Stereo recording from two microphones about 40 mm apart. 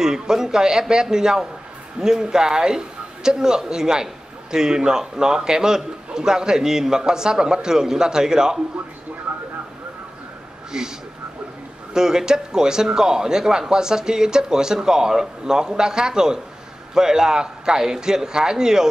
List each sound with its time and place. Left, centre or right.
0.0 s a man's voice: centre
9.3 s vehicle: right
10.7 s a man's voice: centre